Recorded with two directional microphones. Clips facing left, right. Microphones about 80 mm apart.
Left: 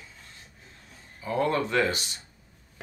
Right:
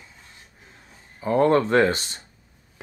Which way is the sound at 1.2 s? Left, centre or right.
Right.